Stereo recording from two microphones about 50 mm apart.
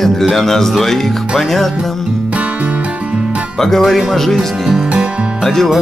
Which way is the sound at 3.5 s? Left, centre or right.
Centre.